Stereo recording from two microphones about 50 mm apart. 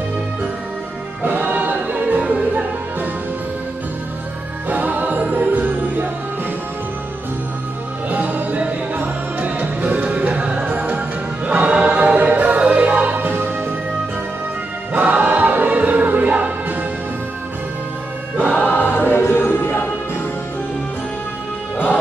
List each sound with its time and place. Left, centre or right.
1.2 s music: right
4.6 s music: right
8.1 s music: right
14.9 s music: right
18.6 s choir: left
18.9 s music: left